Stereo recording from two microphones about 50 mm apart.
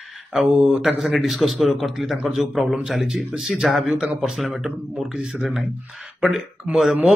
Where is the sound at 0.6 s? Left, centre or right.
Centre.